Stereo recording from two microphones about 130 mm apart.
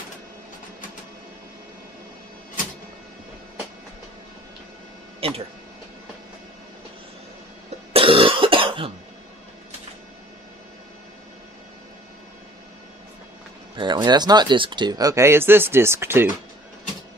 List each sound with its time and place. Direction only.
5.2 s speech: 45° right (ahead or behind)
7.9 s cough: 45° right (ahead or behind)
13.7 s speech: 35° right (ahead or behind); by 16.3 s 20° right (ahead or behind)